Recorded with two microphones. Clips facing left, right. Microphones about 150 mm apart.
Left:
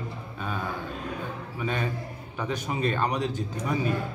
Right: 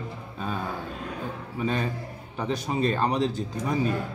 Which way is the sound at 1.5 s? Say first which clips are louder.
Right 2 dB; 35° right (ahead or behind).